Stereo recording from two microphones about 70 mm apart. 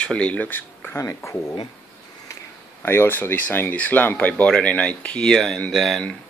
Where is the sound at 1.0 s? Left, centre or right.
Left.